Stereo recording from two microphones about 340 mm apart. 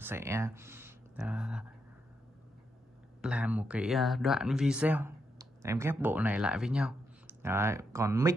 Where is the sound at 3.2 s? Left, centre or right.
Centre.